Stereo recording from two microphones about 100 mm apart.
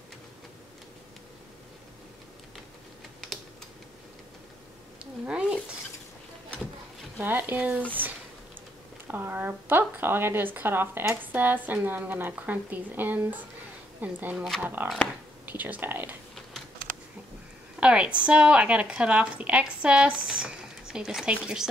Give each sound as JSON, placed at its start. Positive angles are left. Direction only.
{"t": 4.9, "sound": "a sound", "side_deg": -10}
{"t": 7.2, "sound": "speech", "side_deg": -20}
{"t": 9.0, "sound": "speech", "side_deg": -20}
{"t": 14.3, "sound": "speech", "side_deg": 0}
{"t": 14.6, "sound": "speech", "side_deg": -20}
{"t": 17.7, "sound": "speech", "side_deg": -10}